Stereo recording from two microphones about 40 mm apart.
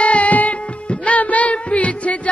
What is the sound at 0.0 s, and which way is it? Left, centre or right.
Music, left.